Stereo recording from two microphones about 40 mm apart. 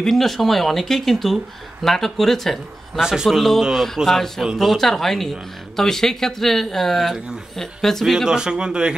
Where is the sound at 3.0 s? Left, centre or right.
Centre.